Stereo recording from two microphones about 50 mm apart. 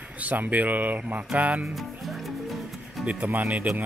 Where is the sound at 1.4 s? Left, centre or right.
Right.